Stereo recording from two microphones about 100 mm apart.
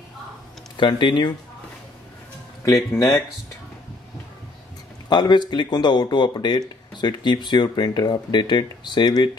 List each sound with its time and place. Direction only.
0.7 s speech: 50° left (ahead or behind)
2.9 s speech: 25° left (ahead or behind)
5.1 s speech: 45° left (ahead or behind)